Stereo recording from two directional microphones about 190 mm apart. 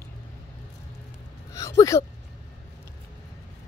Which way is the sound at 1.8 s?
15° left (ahead or behind).